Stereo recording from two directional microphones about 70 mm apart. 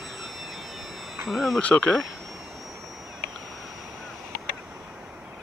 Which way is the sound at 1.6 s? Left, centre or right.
Left.